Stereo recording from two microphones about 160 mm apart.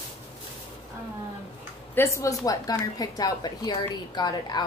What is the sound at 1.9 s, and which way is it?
A woman's voice, 15° left (ahead or behind).